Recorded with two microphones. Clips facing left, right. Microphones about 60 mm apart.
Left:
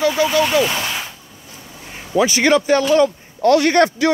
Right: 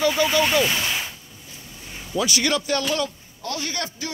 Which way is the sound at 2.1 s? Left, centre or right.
Left.